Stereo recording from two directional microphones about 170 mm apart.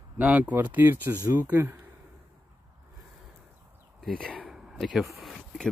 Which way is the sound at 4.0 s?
5° left (ahead or behind).